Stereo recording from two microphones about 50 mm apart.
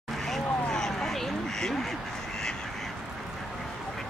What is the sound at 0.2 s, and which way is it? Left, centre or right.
Quack, centre.